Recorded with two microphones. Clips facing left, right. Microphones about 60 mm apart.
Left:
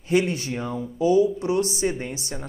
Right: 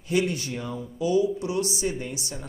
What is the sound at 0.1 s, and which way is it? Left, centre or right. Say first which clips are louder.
Speech: left 3 dB; left.